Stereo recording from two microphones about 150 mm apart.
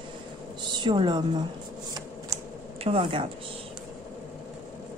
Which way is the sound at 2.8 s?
40° right (ahead or behind).